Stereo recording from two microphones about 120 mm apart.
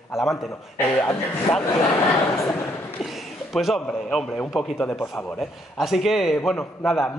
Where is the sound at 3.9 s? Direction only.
5° left (ahead or behind).